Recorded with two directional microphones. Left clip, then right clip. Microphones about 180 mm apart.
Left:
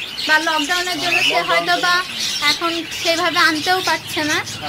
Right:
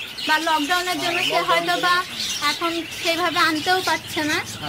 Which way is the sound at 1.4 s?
5° right (ahead or behind).